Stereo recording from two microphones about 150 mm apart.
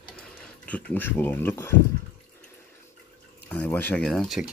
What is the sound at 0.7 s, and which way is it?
Speech, 10° left (ahead or behind).